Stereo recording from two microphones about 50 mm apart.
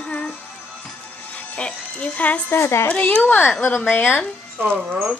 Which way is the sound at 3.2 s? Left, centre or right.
Left.